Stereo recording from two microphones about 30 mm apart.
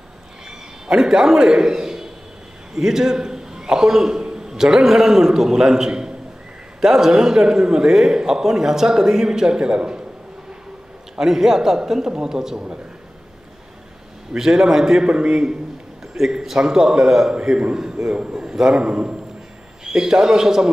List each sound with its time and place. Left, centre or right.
0.5 s a man's voice: centre
2.7 s a man's voice: centre
11.1 s a man's voice: centre
14.3 s a man's voice: centre
15.0 s a man's voice: right
16.3 s a man's voice: centre
17.3 s a man's voice: right
18.0 s a man's voice: centre
18.7 s a man's voice: right
19.8 s a man's voice: right